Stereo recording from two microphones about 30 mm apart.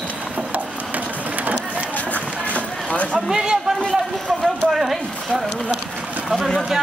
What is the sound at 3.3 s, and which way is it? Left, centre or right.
Speech, centre.